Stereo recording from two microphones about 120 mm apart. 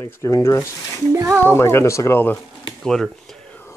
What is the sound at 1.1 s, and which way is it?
Speech, 25° right (ahead or behind).